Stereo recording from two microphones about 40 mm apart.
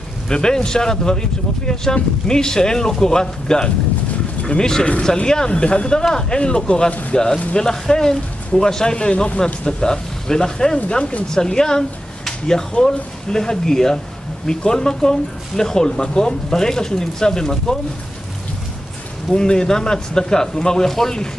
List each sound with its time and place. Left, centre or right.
0.3 s speech: centre
6.9 s speech: left
7.5 s speech: centre
9.1 s speech: left
9.7 s speech: centre
12.3 s a sound: centre
12.8 s speech: centre
19.3 s speech: centre